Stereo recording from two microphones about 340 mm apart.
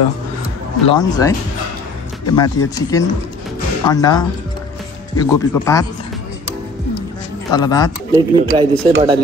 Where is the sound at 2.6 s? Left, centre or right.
Left.